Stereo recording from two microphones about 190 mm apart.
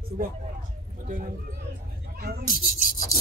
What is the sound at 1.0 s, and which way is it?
Speech, 45° right (ahead or behind).